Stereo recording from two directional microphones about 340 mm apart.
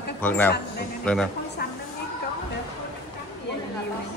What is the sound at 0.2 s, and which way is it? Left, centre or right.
A man's voice, centre.